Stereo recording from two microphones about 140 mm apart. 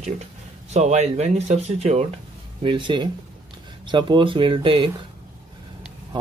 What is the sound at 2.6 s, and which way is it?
Speech, 35° right (ahead or behind).